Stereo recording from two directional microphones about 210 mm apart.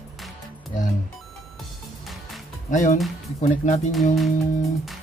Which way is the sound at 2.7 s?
35° left (ahead or behind).